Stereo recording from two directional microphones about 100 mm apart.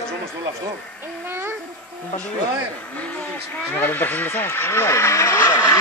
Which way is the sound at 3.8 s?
20° left (ahead or behind).